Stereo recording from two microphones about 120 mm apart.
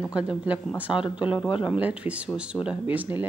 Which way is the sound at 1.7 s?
10° right (ahead or behind).